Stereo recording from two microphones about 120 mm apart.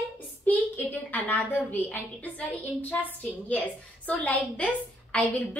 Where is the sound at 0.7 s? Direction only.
15° left (ahead or behind).